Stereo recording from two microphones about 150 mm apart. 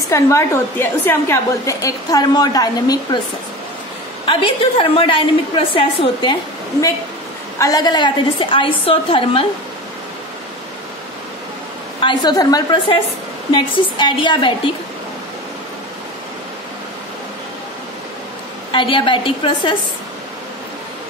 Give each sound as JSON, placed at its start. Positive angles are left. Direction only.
{"t": 0.1, "sound": "a woman's voice", "side_deg": 20}
{"t": 4.3, "sound": "a woman's voice", "side_deg": 35}
{"t": 7.5, "sound": "a woman's voice", "side_deg": 25}
{"t": 12.0, "sound": "a woman's voice", "side_deg": 30}
{"t": 18.7, "sound": "a woman's voice", "side_deg": 35}